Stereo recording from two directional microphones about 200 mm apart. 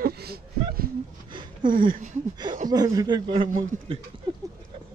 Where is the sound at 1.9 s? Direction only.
40° right (ahead or behind).